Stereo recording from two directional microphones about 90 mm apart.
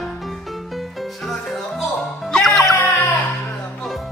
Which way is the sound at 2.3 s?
Centre (ahead or behind).